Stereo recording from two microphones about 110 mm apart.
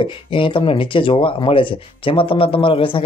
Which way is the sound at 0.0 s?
50° left (ahead or behind).